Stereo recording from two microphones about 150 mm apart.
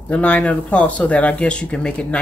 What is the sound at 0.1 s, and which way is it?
Speech, 10° left (ahead or behind).